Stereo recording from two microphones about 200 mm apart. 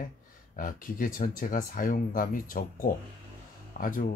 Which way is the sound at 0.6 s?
45° left (ahead or behind).